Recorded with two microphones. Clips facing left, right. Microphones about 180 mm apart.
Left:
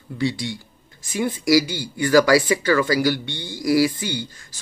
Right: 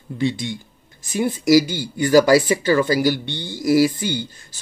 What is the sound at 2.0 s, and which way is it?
Speech, 20° right (ahead or behind).